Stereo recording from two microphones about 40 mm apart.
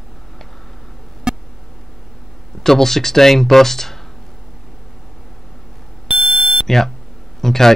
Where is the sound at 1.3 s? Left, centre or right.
Right.